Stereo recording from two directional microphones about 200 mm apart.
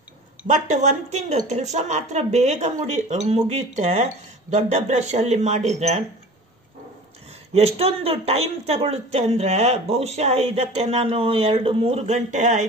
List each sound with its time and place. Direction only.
0.5 s speech: 35° right (ahead or behind)
7.5 s speech: 30° right (ahead or behind)